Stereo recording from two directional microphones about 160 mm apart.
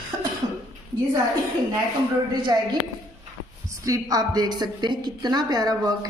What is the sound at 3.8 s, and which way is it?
A woman's voice, 20° right (ahead or behind).